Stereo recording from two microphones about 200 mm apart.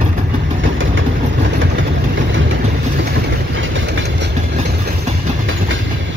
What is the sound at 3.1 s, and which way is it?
Train, 65° right (ahead or behind).